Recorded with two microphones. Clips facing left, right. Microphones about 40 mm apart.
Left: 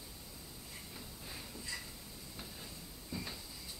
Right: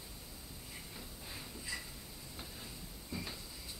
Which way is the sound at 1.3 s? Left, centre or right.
Centre.